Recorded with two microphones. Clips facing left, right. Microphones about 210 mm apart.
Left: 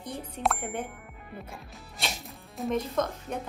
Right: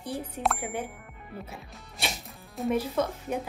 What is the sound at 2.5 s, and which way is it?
Speech, 5° right (ahead or behind).